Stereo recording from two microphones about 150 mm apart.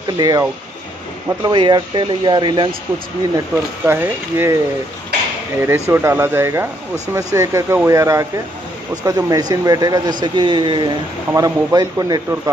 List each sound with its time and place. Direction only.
0.2 s speech: 25° right (ahead or behind)
3.8 s speech: 15° right (ahead or behind)
5.6 s speech: 15° right (ahead or behind)